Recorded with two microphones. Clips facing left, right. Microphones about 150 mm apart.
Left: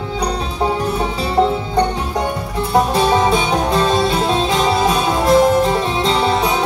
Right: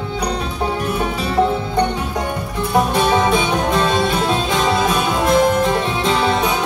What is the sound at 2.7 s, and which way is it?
Music, 35° left (ahead or behind).